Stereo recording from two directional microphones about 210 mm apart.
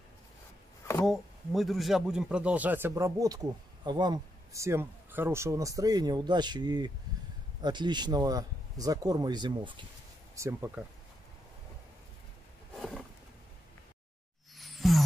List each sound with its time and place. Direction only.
1.0 s speech: centre (ahead or behind)
12.7 s wild animals: centre (ahead or behind)
14.6 s music: centre (ahead or behind)